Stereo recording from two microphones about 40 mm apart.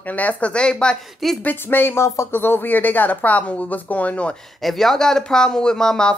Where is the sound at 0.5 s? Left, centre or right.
Left.